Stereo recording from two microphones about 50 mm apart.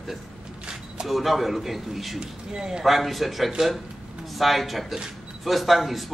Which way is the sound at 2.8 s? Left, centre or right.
Centre.